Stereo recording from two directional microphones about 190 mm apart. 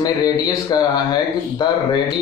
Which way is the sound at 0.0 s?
20° left (ahead or behind).